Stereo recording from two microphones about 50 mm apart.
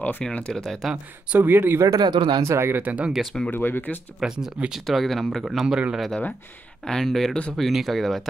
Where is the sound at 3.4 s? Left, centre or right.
Left.